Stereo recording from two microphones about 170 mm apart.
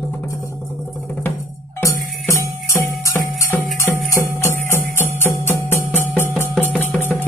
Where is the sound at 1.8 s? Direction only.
20° left (ahead or behind).